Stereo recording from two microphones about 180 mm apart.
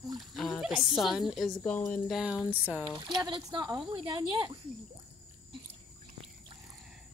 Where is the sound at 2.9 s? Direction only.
25° right (ahead or behind).